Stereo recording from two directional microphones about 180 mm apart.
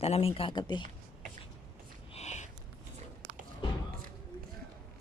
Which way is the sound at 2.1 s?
40° left (ahead or behind).